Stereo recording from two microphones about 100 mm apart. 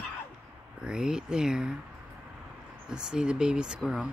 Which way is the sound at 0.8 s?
10° right (ahead or behind).